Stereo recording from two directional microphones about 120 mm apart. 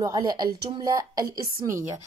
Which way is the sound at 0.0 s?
30° right (ahead or behind).